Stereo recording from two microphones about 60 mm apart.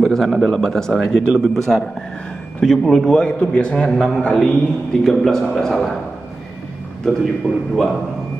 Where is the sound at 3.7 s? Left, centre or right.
Centre.